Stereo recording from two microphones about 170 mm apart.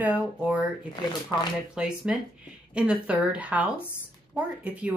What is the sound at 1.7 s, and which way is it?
Speech, 5° right (ahead or behind).